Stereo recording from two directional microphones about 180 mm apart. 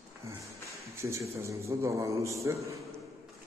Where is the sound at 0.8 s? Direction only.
15° right (ahead or behind).